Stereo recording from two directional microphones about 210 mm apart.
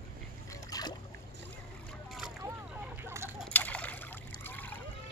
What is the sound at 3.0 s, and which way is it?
Chicken, 10° right (ahead or behind).